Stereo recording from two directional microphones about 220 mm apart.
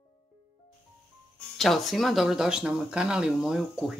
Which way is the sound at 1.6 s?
Centre (ahead or behind).